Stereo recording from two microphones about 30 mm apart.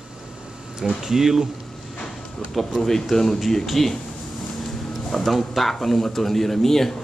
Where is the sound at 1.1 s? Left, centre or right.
Centre.